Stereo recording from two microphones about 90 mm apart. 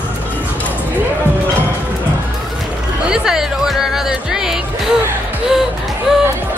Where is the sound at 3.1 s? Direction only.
5° right (ahead or behind).